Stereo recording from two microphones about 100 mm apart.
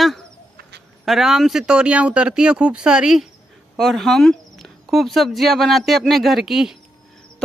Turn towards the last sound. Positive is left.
turn(degrees=-5)  # may be behind; listen again after turning